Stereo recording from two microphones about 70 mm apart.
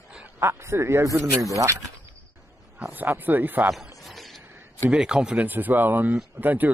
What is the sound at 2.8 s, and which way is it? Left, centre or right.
Speech, right.